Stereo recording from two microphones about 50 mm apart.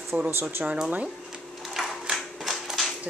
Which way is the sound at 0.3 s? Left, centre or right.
Right.